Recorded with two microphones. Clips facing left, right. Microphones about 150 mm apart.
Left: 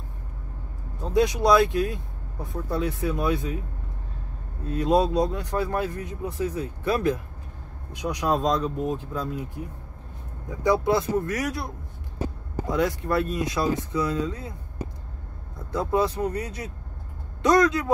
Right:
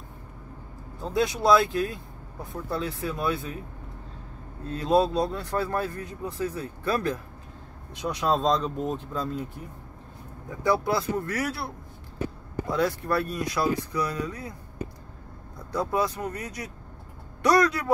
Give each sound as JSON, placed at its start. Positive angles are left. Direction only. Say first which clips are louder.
{"t": 1.0, "sound": "speech", "louder": "left 2 dB", "side_deg": 20}
{"t": 4.7, "sound": "speech", "louder": "left 1 dB", "side_deg": 15}
{"t": 10.6, "sound": "speech", "louder": "left 3 dB", "side_deg": 20}
{"t": 15.7, "sound": "speech", "louder": "left 3 dB", "side_deg": 25}